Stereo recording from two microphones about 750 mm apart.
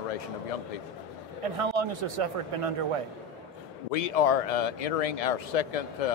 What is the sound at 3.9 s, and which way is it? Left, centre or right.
Speech, left.